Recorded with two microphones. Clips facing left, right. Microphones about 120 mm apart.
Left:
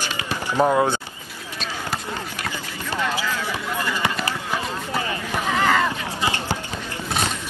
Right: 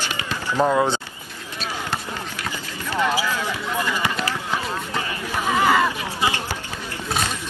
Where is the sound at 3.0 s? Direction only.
15° right (ahead or behind).